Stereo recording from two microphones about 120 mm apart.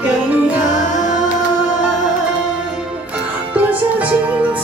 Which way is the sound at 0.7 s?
90° left.